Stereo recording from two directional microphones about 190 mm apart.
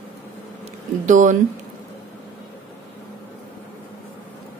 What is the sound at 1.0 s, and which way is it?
Speech, 40° right (ahead or behind).